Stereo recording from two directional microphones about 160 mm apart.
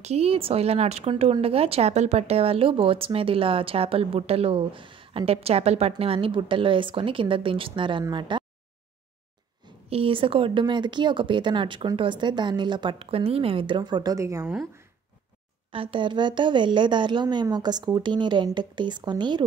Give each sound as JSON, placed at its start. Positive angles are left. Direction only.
{"t": 0.0, "sound": "speech", "side_deg": -40}
{"t": 9.8, "sound": "a woman's voice", "side_deg": -35}
{"t": 15.7, "sound": "a woman's voice", "side_deg": -35}